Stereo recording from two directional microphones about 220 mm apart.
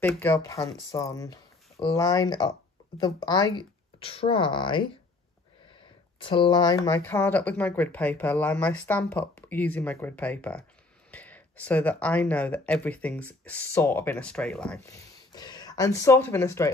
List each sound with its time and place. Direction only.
0.0 s speech: 10° left (ahead or behind)
6.1 s speech: 20° left (ahead or behind); by 14.8 s 5° left (ahead or behind)
14.9 s speech: 20° left (ahead or behind)